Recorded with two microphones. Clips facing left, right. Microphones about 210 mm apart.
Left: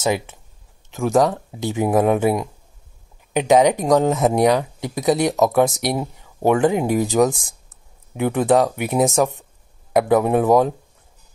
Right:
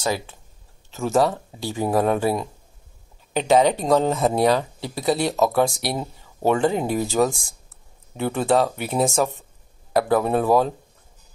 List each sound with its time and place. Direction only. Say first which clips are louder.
0.0 s speech: left 4 dB; 20° left (ahead or behind)